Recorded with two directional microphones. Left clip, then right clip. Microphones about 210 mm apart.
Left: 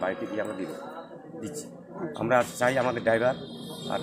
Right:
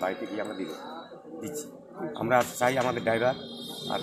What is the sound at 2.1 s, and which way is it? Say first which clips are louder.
Speech: left 1 dB; 15° left (ahead or behind).